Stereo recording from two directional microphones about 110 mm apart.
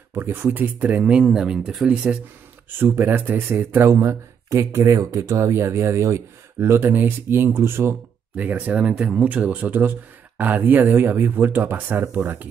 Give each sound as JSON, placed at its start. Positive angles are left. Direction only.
{"t": 0.1, "sound": "speech", "side_deg": -20}
{"t": 2.8, "sound": "speech", "side_deg": -20}